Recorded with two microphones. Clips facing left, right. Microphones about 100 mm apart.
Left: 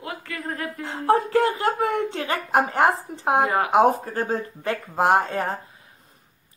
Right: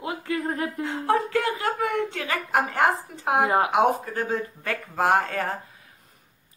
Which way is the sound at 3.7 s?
35° left (ahead or behind).